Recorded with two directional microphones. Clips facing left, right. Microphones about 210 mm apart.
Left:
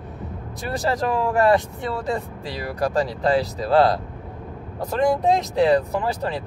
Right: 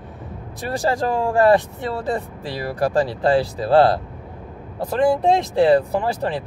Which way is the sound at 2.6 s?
30° right (ahead or behind).